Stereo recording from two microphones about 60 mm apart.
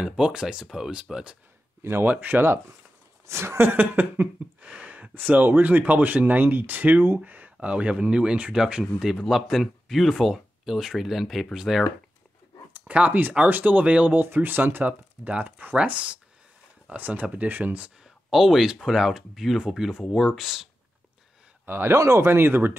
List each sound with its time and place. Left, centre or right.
0.0 s speech: centre
1.8 s speech: right
2.0 s speech: right
3.3 s speech: right
4.6 s a sound: centre
5.3 s speech: right; by 8.8 s centre
9.3 s speech: centre
12.7 s speech: right
14.2 s speech: right
18.0 s speech: centre
21.6 s speech: right
21.9 s speech: right